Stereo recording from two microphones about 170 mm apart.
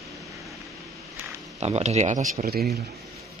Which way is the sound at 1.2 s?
10° right (ahead or behind).